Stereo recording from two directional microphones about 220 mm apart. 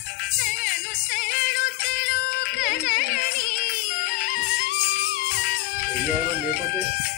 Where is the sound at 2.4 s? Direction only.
40° left (ahead or behind).